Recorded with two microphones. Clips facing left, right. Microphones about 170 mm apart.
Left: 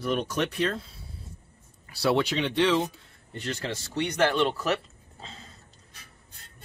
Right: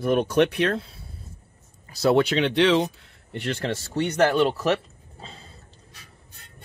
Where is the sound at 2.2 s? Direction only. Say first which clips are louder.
Right 4 dB; 75° right (ahead or behind).